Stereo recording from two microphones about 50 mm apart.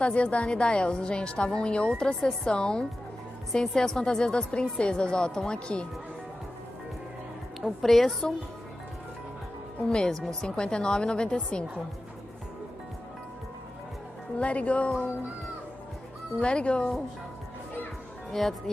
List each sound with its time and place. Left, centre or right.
0.0 s a woman's voice: left
7.6 s a woman's voice: centre
9.8 s speech: centre
14.4 s a woman's voice: left
16.3 s a woman's voice: left
18.3 s speech: centre